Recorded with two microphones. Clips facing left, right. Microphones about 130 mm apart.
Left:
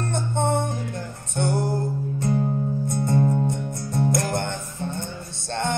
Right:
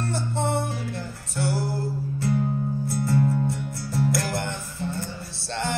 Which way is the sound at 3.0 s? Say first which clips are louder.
Left 2 dB; 35° left (ahead or behind).